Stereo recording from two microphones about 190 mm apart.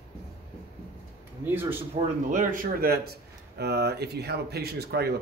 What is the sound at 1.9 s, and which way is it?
Speech, 45° right (ahead or behind).